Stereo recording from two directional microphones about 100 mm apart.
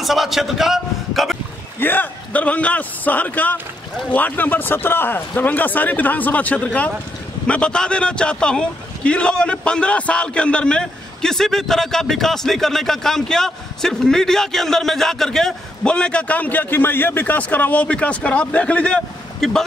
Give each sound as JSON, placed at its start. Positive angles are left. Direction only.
{"t": 0.0, "sound": "a man's voice", "side_deg": 0}
{"t": 1.8, "sound": "a man's voice", "side_deg": 20}